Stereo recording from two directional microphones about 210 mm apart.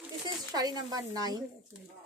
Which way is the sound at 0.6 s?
20° right (ahead or behind).